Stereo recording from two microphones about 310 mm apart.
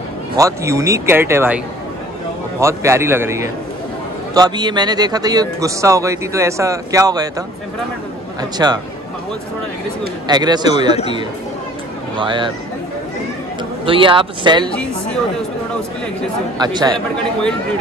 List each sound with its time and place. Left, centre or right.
0.4 s a man's voice: centre
2.6 s a man's voice: centre
10.2 s a man's voice: centre
12.2 s a man's voice: centre
13.8 s a man's voice: centre
16.5 s a man's voice: centre